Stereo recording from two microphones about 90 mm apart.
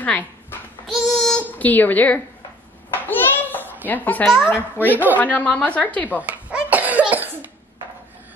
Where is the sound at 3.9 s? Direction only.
20° left (ahead or behind).